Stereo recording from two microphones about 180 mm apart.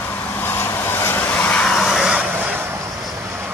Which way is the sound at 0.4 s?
10° left (ahead or behind).